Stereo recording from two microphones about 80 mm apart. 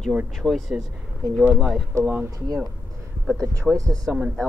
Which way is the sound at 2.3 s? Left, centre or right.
Right.